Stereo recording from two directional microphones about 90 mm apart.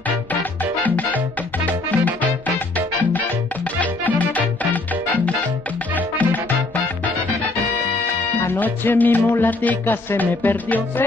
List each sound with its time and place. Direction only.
0.3 s music: 20° left (ahead or behind)
3.8 s music: 15° left (ahead or behind)
8.5 s music: 20° left (ahead or behind)